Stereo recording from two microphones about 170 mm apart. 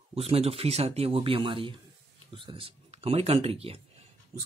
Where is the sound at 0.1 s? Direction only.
35° right (ahead or behind).